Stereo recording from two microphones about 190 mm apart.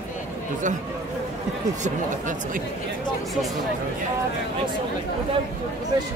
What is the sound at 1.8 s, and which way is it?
Speech, 45° right (ahead or behind).